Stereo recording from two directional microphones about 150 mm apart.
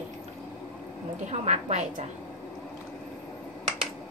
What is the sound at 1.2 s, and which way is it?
Speech, 50° right (ahead or behind).